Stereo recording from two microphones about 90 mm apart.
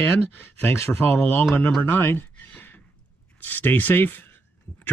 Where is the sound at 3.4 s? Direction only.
20° left (ahead or behind).